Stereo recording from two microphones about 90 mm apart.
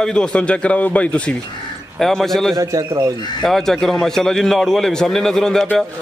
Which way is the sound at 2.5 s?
35° right (ahead or behind).